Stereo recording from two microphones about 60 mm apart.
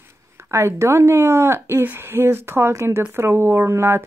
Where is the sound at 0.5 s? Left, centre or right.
Right.